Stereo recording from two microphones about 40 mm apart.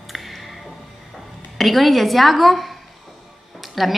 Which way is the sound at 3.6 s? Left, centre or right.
Centre.